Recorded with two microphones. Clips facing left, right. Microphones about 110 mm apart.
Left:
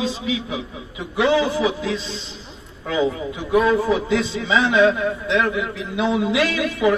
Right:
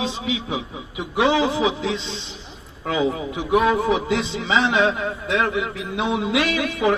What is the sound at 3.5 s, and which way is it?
A man's voice, 20° right (ahead or behind).